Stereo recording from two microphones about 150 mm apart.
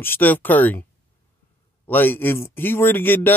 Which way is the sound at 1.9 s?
15° left (ahead or behind).